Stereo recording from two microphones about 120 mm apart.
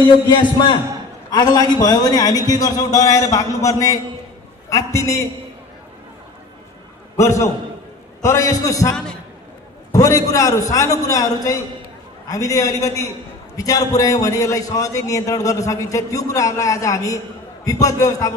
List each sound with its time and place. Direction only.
0.3 s a man's voice: 40° left (ahead or behind); by 5.2 s 25° left (ahead or behind)
7.2 s a man's voice: 25° left (ahead or behind)
9.9 s a man's voice: 30° left (ahead or behind)